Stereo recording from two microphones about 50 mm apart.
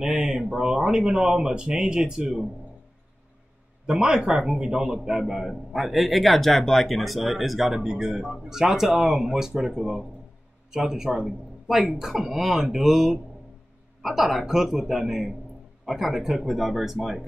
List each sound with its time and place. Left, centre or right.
0.0 s speech: centre
3.8 s speech: centre